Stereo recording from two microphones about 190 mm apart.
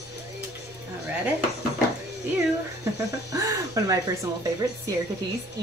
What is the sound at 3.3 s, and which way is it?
Speech, 20° right (ahead or behind).